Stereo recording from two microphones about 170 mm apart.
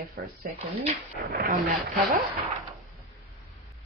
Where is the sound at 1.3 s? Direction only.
60° right (ahead or behind).